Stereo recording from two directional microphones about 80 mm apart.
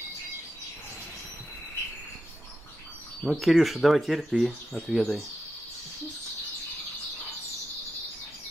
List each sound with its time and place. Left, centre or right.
3.3 s speech: centre